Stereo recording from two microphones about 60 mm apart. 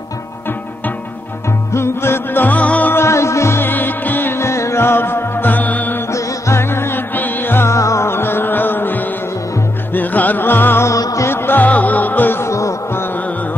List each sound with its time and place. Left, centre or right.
1.7 s music: left
2.4 s music: left
2.9 s music: left
6.1 s music: left
7.7 s music: left
8.1 s music: left
11.0 s music: left
11.2 s music: left
12.4 s insect: left
12.9 s carnatic music: left